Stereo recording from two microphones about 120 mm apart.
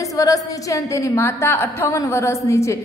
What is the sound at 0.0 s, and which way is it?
A woman's voice, 30° left (ahead or behind).